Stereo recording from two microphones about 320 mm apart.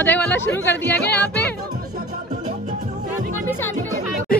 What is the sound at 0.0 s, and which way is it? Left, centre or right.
Speech, centre.